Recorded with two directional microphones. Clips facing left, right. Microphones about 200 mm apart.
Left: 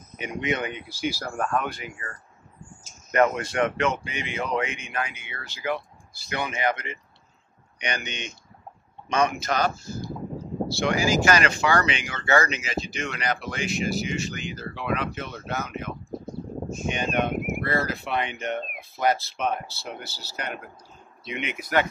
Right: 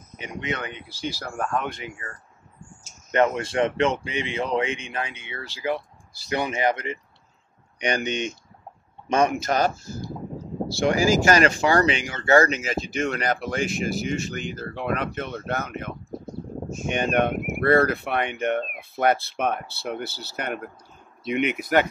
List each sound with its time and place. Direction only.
0.2 s speech: 15° left (ahead or behind)
1.6 s speech: 25° right (ahead or behind)
3.1 s speech: 25° right (ahead or behind); by 9.7 s 45° right (ahead or behind)
10.8 s speech: 45° right (ahead or behind)
16.9 s speech: 55° right (ahead or behind)